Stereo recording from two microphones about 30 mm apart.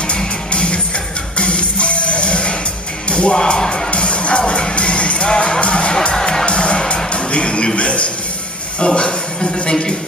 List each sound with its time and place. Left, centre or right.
0.5 s music: left
3.3 s speech: left
3.9 s music: left
7.1 s speech: left
8.7 s music: left
9.7 s speech: left